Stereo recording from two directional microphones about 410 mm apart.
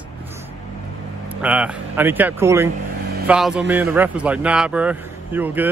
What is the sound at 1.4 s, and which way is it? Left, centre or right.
Speech, centre.